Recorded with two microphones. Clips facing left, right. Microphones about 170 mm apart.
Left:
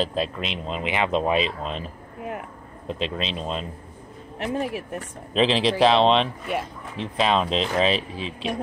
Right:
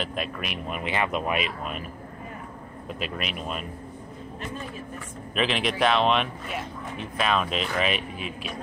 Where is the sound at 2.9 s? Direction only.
25° left (ahead or behind).